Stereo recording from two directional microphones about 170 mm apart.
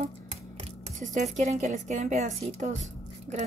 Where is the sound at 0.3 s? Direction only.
35° right (ahead or behind).